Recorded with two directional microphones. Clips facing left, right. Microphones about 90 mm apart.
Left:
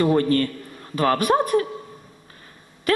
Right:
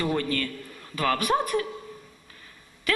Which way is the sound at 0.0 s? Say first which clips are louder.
Left 8 dB; 35° left (ahead or behind).